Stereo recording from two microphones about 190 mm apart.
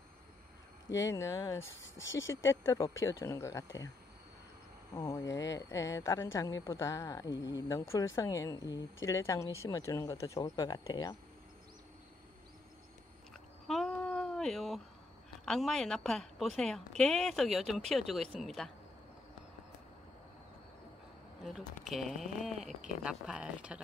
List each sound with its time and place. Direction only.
1.0 s speech: 15° left (ahead or behind)
1.8 s speech: 80° left
2.4 s speech: 15° left (ahead or behind)
4.9 s speech: 15° left (ahead or behind)
13.7 s a sound: centre (ahead or behind)
15.4 s a woman's voice: centre (ahead or behind)
21.5 s a woman's voice: centre (ahead or behind)